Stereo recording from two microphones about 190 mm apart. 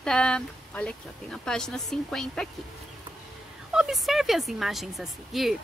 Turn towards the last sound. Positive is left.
turn(degrees=0)  # may be behind; listen again after turning